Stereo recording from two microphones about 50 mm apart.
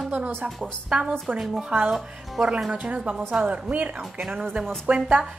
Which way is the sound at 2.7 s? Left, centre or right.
Right.